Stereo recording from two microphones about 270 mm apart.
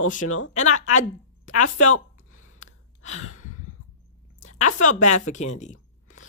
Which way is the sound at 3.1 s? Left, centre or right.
Left.